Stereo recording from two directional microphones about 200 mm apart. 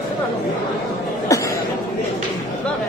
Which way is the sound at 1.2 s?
15° left (ahead or behind).